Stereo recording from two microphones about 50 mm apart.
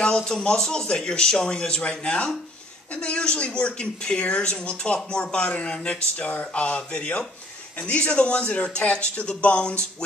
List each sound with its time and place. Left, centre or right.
0.0 s speech: centre